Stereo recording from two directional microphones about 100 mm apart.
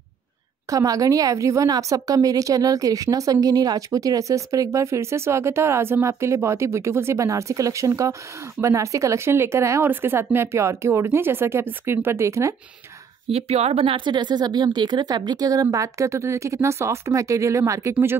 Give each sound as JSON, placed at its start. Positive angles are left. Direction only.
{"t": 0.7, "sound": "a woman's voice", "side_deg": -35}
{"t": 13.3, "sound": "speech", "side_deg": -90}
{"t": 14.0, "sound": "a woman's voice", "side_deg": -50}